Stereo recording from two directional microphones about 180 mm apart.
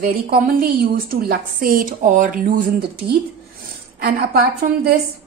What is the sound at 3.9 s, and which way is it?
Speech, 55° right (ahead or behind).